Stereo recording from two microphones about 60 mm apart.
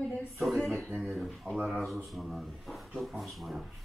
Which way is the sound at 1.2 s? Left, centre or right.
Centre.